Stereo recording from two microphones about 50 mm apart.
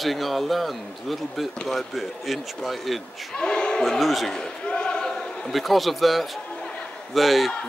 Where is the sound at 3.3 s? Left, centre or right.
Centre.